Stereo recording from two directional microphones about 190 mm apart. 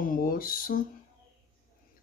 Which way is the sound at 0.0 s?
45° left (ahead or behind).